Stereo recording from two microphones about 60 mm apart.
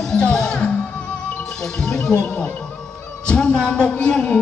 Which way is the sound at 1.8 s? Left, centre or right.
Centre.